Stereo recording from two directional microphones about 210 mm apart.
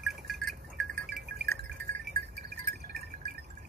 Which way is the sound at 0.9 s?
50° right (ahead or behind).